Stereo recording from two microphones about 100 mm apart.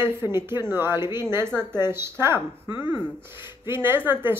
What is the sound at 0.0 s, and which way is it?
Speech, 25° right (ahead or behind).